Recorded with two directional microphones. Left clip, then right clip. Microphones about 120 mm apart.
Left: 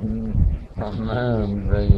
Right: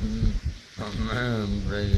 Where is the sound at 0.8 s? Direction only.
50° right (ahead or behind).